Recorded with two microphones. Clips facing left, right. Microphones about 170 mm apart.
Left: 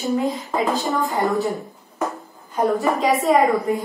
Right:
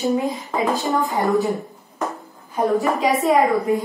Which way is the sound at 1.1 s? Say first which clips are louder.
Right 2 dB; centre (ahead or behind).